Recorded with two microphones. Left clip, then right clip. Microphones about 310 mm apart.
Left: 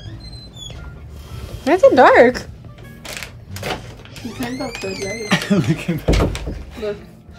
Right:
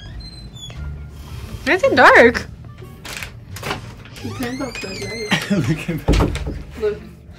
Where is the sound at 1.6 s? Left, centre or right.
Centre.